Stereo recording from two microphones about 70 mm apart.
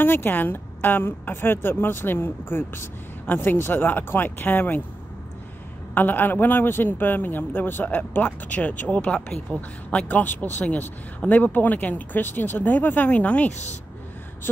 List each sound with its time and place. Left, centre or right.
0.0 s a woman's voice: left
5.9 s speech: left